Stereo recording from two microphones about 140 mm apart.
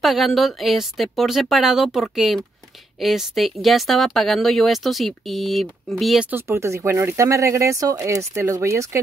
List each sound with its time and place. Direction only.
0.0 s speech: centre (ahead or behind)
6.3 s speech: 20° right (ahead or behind)